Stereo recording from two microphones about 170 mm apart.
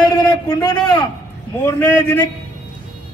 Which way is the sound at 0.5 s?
25° left (ahead or behind).